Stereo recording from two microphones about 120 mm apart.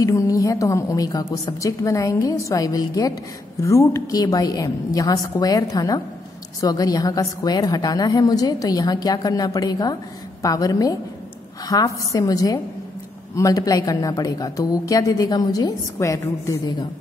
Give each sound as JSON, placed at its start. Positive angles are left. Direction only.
{"t": 0.0, "sound": "a woman's voice", "side_deg": 25}